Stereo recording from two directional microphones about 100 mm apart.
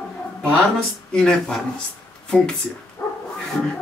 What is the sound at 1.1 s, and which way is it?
Speech, 5° left (ahead or behind).